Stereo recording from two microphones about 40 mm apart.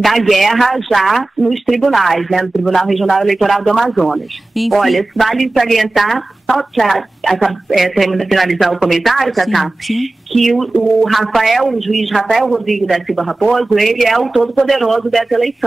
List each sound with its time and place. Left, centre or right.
0.0 s a woman's voice: centre